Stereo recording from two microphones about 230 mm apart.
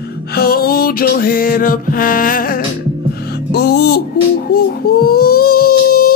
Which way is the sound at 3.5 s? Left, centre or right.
Left.